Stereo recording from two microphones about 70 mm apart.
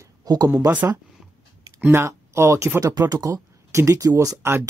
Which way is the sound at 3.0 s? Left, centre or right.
Right.